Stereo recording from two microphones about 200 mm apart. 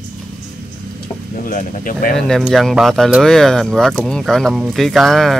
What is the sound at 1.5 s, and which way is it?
Speech, 45° left (ahead or behind).